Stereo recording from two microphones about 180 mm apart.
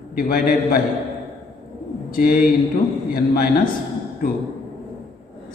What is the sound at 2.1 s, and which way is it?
Speech, 50° left (ahead or behind).